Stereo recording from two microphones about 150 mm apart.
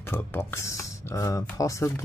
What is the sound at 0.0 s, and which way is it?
Speech, 15° left (ahead or behind).